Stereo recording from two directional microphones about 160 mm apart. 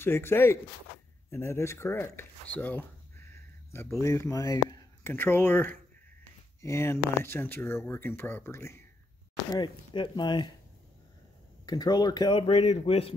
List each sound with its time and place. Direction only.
0.0 s speech: 15° left (ahead or behind)
5.1 s speech: 15° left (ahead or behind)
9.5 s speech: 30° left (ahead or behind)
11.6 s a man's voice: 25° left (ahead or behind)